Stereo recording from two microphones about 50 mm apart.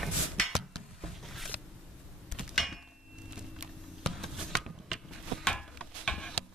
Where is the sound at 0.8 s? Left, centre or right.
Centre.